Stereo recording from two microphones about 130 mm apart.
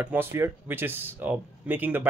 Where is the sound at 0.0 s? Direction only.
15° right (ahead or behind).